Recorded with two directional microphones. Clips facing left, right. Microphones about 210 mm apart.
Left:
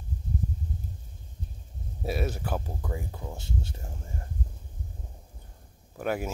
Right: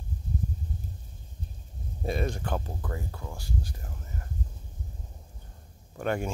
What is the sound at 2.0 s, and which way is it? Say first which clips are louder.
Speech: even; 5° left (ahead or behind).